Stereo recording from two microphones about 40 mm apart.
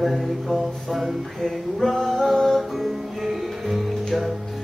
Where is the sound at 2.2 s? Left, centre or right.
Centre.